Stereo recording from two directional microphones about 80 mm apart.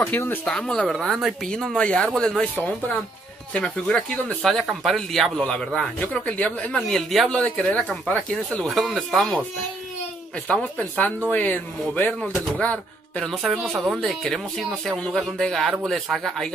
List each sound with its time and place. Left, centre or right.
0.0 s speech: left
0.5 s speech: centre
3.5 s speech: centre
5.9 s speech: centre
7.2 s speech: centre
10.5 s speech: centre
13.4 s speech: centre